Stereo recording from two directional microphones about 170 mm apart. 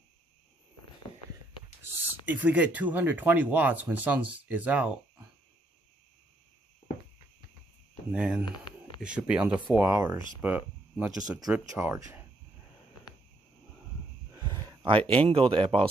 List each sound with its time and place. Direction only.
2.2 s speech: 10° right (ahead or behind)
8.1 s speech: 5° right (ahead or behind)
14.3 s a sound: 25° right (ahead or behind)
15.2 s speech: 35° right (ahead or behind)